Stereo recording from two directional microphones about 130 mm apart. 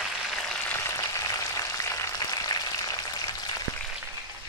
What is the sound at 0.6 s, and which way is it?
Frying, 20° left (ahead or behind).